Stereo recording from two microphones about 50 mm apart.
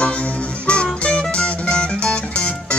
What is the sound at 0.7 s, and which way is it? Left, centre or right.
Music, left.